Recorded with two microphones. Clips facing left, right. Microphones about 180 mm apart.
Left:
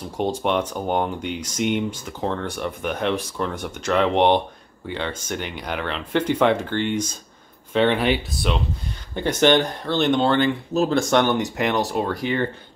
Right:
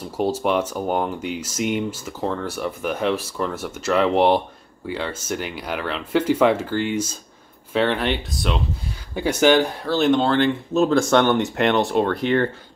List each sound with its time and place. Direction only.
0.2 s speech: 5° right (ahead or behind)
11.1 s speech: 60° right (ahead or behind)